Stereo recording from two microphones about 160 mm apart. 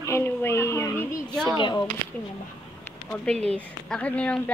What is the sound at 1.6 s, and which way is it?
Speech, 30° left (ahead or behind).